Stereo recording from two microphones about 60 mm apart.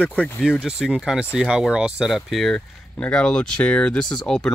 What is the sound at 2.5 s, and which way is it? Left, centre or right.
Speech, centre.